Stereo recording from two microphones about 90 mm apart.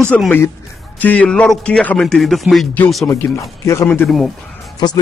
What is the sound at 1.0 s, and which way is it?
A man's voice, 15° left (ahead or behind).